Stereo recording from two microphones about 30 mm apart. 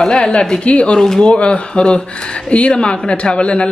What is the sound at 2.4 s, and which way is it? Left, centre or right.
Speech, left.